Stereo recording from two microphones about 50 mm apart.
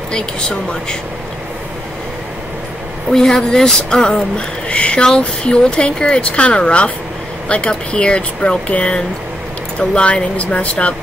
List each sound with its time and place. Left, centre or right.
0.1 s speech: centre
3.1 s speech: centre; by 11.0 s left